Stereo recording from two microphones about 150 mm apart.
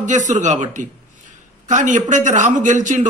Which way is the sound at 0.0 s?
55° right (ahead or behind).